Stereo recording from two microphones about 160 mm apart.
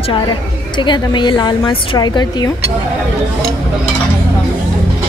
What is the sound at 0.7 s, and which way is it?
A woman's voice, 30° left (ahead or behind).